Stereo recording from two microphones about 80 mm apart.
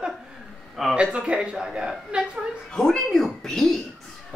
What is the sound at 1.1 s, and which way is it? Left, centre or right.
Speech, centre.